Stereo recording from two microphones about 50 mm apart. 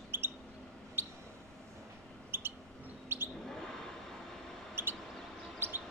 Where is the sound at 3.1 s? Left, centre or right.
Right.